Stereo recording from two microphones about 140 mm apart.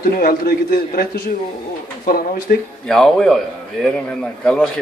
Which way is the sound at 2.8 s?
5° left (ahead or behind).